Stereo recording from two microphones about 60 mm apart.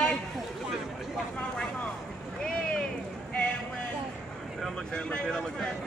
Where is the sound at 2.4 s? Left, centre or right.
Centre.